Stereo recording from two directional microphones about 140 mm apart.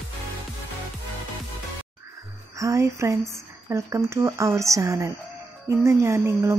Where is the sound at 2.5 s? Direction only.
20° right (ahead or behind).